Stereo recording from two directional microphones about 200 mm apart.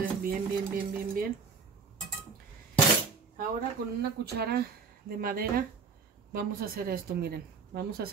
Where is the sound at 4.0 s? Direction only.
50° right (ahead or behind).